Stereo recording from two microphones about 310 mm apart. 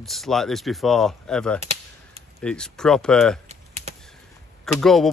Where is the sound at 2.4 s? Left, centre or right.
Centre.